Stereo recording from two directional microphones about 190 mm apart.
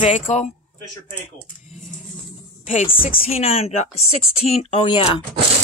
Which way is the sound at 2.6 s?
30° left (ahead or behind).